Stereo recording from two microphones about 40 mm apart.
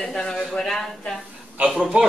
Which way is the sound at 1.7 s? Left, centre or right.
Right.